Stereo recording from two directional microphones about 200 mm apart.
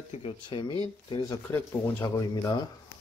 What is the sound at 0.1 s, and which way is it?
Speech, 25° left (ahead or behind).